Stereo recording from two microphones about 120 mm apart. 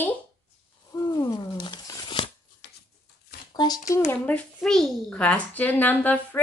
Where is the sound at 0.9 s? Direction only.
30° left (ahead or behind).